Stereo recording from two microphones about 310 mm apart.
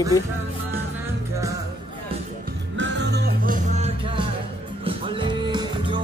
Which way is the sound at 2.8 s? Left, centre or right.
Right.